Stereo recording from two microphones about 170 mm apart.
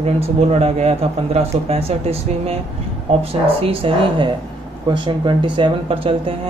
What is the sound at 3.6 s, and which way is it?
Speech, 35° right (ahead or behind).